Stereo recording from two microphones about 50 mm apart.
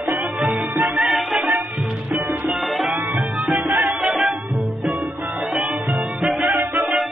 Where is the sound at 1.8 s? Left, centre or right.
Centre.